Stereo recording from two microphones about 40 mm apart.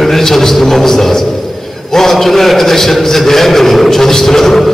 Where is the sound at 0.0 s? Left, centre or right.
Centre.